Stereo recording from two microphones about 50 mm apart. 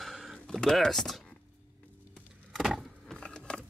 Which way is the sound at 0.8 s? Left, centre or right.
Centre.